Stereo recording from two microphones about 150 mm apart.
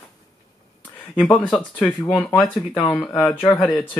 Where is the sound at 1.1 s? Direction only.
5° left (ahead or behind).